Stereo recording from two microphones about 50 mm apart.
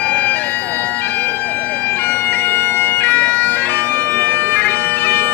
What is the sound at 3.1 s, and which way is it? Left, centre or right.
Bagpipes, left.